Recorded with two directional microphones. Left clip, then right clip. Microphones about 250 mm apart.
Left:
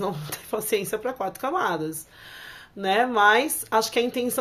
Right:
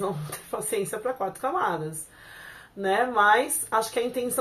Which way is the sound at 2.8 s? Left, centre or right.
Left.